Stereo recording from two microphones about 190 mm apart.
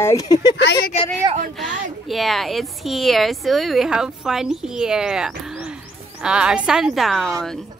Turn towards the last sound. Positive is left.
turn(degrees=0)  # may be behind; listen again after turning